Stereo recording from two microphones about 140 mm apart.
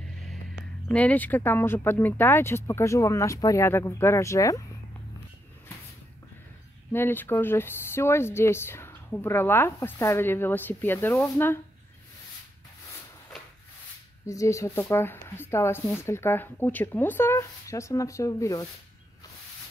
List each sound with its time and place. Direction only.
0.8 s speech: 10° left (ahead or behind)
6.9 s speech: 15° left (ahead or behind)
14.2 s a woman's voice: 20° left (ahead or behind)